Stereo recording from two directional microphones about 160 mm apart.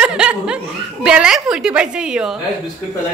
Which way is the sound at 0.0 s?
5° right (ahead or behind).